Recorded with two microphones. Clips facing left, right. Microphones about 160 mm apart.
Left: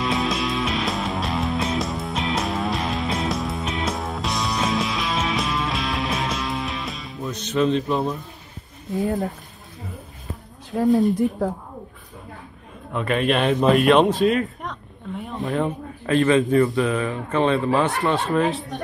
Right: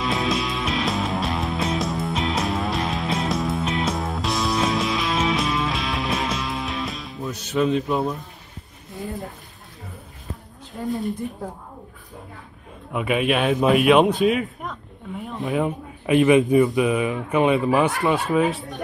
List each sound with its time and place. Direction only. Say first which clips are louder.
0.0 s music: even; centre (ahead or behind)
10.7 s speech: left 9 dB; 75° left (ahead or behind)
12.9 s speech: even; 10° right (ahead or behind)
16.1 s speech: right 2 dB; 15° right (ahead or behind)